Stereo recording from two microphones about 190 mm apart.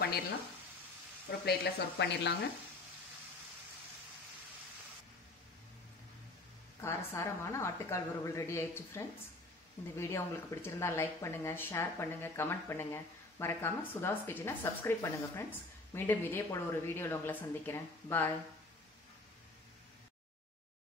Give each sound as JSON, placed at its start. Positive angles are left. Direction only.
{"t": 1.4, "sound": "speech", "side_deg": 60}
{"t": 6.8, "sound": "speech", "side_deg": 15}